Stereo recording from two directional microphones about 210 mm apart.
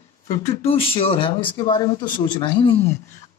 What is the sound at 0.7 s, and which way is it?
Speech, 25° left (ahead or behind).